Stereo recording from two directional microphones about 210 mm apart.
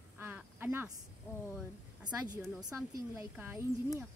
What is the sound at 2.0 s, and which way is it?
Speech, 20° right (ahead or behind).